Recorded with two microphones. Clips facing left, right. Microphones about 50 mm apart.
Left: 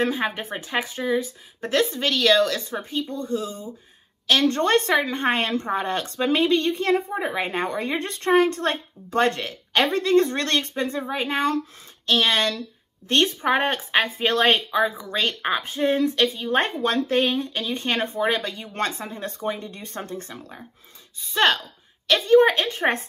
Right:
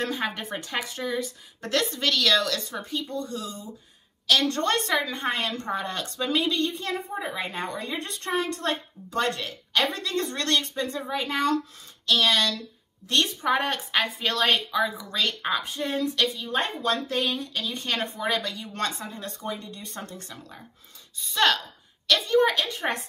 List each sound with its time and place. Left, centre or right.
0.0 s a woman's voice: left